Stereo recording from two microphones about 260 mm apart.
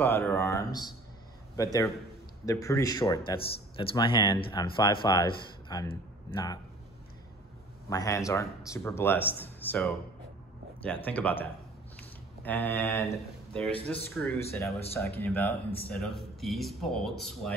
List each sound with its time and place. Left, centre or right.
0.0 s speech: centre
7.9 s speech: centre
12.4 s speech: centre